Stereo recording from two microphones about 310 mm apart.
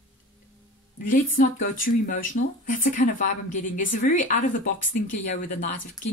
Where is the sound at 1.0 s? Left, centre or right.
Left.